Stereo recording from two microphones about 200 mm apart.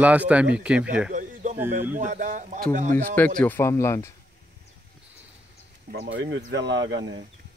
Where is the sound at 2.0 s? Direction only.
40° right (ahead or behind).